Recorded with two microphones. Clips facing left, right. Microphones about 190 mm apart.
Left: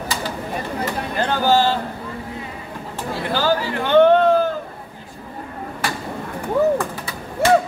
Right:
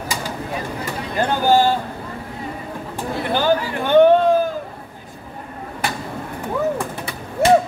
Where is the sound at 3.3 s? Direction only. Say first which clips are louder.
Right 1 dB; 15° right (ahead or behind).